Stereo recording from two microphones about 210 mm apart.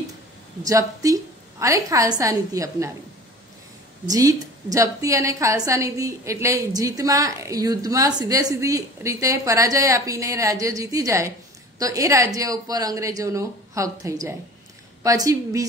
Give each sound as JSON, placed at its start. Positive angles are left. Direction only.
{"t": 0.7, "sound": "a woman's voice", "side_deg": -15}
{"t": 4.1, "sound": "a woman's voice", "side_deg": -15}